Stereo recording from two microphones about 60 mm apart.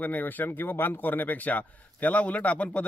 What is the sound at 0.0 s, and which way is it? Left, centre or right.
Speech, left.